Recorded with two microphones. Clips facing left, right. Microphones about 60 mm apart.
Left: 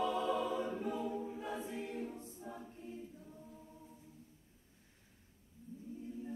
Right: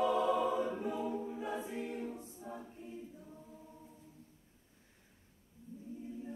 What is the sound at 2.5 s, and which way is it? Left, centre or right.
Choir, right.